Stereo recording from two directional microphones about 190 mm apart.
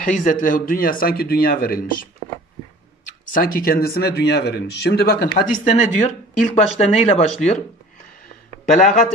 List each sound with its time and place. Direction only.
0.0 s speech: 45° left (ahead or behind)
3.3 s speech: 50° left (ahead or behind)
5.5 s speech: 40° left (ahead or behind)
8.7 s speech: 40° left (ahead or behind)